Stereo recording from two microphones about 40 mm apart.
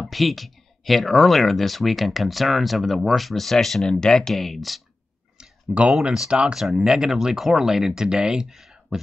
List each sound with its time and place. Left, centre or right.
0.0 s speech: centre
5.4 s clicking: right
6.1 s speech: centre
8.5 s a sound: centre